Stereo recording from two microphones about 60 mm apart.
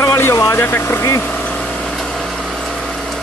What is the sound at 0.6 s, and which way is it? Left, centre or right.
Speech, left.